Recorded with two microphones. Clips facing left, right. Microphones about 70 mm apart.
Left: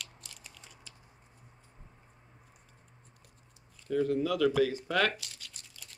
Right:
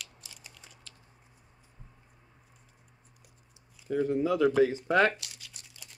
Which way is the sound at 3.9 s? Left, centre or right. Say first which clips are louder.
Right 2 dB; centre.